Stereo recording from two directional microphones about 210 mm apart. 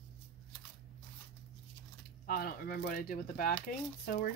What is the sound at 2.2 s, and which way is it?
Speech, 45° left (ahead or behind).